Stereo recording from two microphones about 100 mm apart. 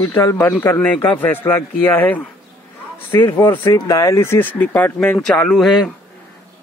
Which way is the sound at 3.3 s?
25° left (ahead or behind).